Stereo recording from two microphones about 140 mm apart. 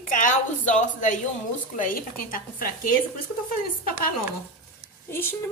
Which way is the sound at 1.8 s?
85° left.